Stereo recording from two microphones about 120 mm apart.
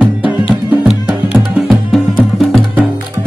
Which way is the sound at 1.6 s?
Centre (ahead or behind).